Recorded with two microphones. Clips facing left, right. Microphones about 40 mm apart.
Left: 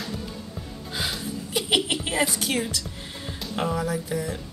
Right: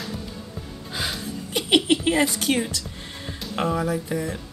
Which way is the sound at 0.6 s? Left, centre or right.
Centre.